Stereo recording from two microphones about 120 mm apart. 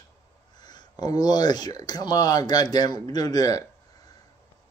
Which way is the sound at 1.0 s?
35° left (ahead or behind).